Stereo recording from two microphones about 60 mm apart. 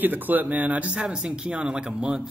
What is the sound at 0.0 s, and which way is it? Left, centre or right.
Speech, right.